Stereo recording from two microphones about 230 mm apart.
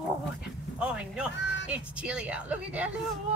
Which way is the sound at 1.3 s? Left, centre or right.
Left.